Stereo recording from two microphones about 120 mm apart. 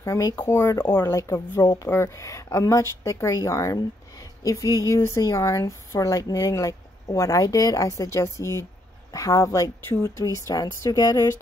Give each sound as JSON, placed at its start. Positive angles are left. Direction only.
{"t": 0.0, "sound": "speech", "side_deg": 30}